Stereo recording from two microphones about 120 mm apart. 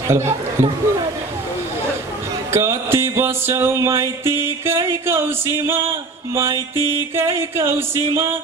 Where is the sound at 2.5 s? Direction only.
20° right (ahead or behind).